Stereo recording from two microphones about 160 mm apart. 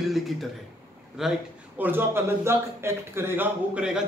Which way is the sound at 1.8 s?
15° right (ahead or behind).